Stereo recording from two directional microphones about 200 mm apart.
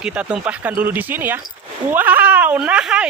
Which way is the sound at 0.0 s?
5° right (ahead or behind).